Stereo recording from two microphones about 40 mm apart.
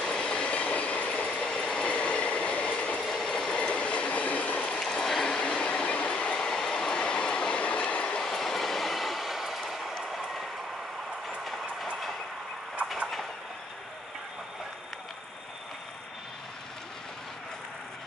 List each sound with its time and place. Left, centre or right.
0.0 s train: left
1.5 s train: left
3.1 s train: centre
3.4 s train: left
5.2 s train: centre
8.2 s train: centre